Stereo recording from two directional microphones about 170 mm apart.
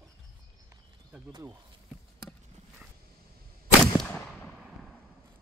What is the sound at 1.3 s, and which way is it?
Speech, 15° right (ahead or behind).